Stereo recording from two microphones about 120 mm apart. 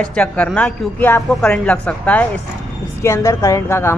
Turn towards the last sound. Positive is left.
turn(degrees=25)  # may be behind; listen again after turning